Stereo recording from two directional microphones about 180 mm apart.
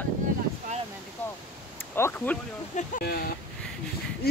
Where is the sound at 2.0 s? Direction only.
10° left (ahead or behind).